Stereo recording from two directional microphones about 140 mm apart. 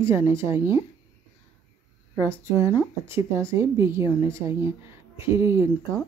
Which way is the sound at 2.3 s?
20° right (ahead or behind).